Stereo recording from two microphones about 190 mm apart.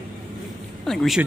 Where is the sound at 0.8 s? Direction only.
Centre (ahead or behind).